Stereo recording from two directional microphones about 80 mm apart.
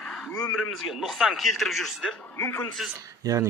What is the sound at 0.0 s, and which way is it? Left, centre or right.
A man's voice, centre.